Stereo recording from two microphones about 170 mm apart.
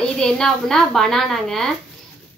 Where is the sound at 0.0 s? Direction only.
5° left (ahead or behind).